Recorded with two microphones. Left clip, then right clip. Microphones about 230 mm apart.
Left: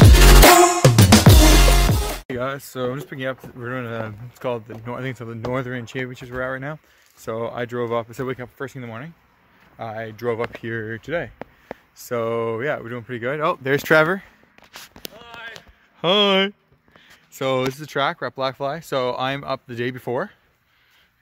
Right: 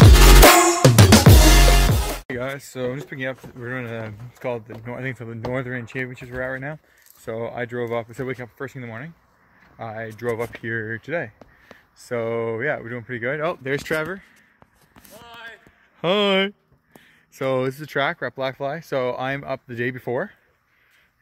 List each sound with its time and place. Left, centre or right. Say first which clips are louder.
0.1 s music: left 1 dB; centre
2.2 s speech: left 2 dB; centre
13.9 s speech: left 10 dB; left
15.2 s a sound: left 1 dB; centre
16.0 s speech: left 2 dB; centre